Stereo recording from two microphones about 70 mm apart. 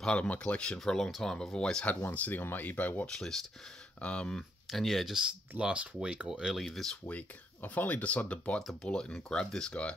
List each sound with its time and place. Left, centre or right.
0.0 s speech: centre
3.1 s speech: centre
4.6 s speech: centre
6.4 s speech: centre
7.1 s speech: left